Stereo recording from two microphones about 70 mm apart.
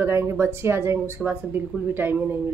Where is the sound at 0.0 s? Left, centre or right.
Right.